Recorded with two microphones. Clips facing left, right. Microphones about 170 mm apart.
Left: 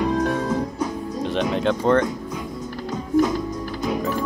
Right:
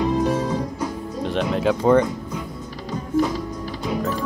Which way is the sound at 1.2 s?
Centre (ahead or behind).